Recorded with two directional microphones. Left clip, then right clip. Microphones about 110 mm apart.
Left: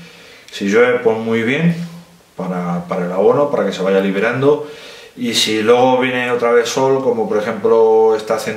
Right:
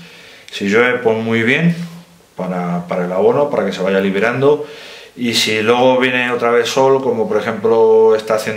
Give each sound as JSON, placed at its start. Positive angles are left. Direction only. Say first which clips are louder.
{"t": 0.5, "sound": "speech", "louder": "left 1 dB", "side_deg": -15}